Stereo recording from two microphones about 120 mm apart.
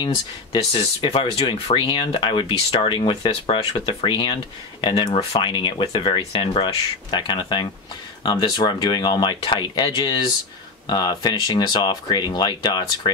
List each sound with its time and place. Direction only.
0.7 s speech: 50° left (ahead or behind)
3.8 s speech: 40° left (ahead or behind)
5.1 s speech: 55° left (ahead or behind)
5.5 s speech: 40° left (ahead or behind)